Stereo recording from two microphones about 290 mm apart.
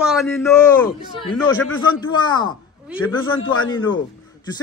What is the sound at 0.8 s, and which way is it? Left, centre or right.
Speech, centre.